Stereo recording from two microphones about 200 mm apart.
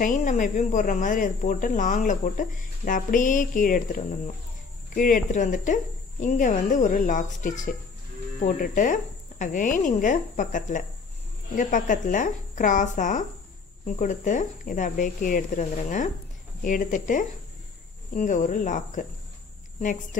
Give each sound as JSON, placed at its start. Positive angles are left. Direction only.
{"t": 0.0, "sound": "speech", "side_deg": 40}